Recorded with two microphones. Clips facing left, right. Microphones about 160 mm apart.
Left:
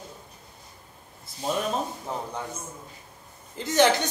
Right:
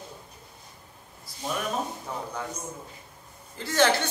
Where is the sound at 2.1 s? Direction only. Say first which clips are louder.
Left 2 dB; 25° left (ahead or behind).